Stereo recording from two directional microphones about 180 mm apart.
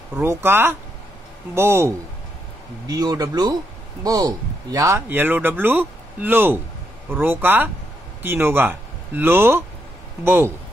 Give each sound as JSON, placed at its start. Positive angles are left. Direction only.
{"t": 0.1, "sound": "speech", "side_deg": -10}